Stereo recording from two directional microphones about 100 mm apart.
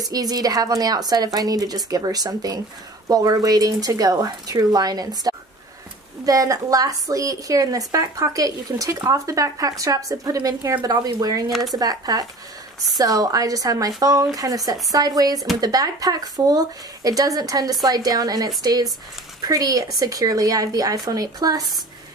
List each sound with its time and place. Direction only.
0.1 s a woman's voice: 40° right (ahead or behind)